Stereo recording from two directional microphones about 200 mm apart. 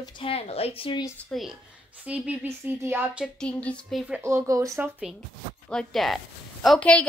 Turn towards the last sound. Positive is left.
turn(degrees=5)  # may be behind; listen again after turning